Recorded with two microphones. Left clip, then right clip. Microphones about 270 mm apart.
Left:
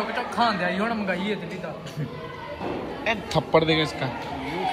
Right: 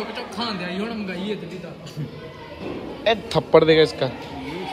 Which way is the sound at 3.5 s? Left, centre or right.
Right.